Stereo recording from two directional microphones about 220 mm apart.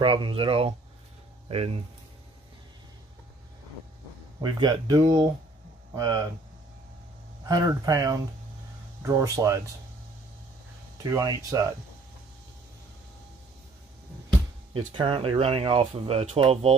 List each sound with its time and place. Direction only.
0.0 s speech: 25° right (ahead or behind)
4.4 s speech: 20° right (ahead or behind)
7.4 s speech: 15° right (ahead or behind)
11.0 s speech: 15° right (ahead or behind)
15.0 s speech: 25° right (ahead or behind)